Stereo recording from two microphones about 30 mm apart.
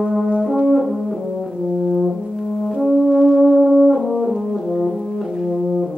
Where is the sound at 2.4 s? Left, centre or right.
Centre.